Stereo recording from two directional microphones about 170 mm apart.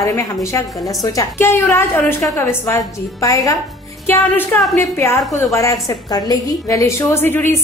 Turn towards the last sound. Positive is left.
turn(degrees=10)  # may be behind; listen again after turning